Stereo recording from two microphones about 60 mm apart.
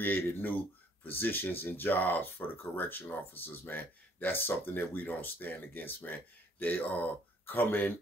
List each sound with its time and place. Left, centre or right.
0.0 s speech: left